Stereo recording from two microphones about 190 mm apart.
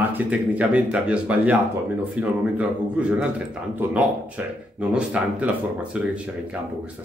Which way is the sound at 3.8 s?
5° right (ahead or behind).